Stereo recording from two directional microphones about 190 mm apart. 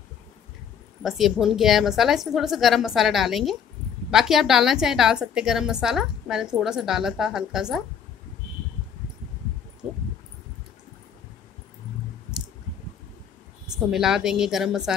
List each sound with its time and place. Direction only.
1.0 s a woman's voice: centre (ahead or behind)
13.8 s a woman's voice: 5° right (ahead or behind)